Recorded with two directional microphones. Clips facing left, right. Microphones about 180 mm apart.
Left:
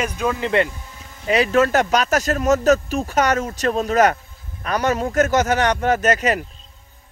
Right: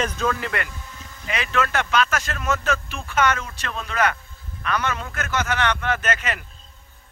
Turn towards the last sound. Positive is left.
turn(degrees=40)  # may be behind; listen again after turning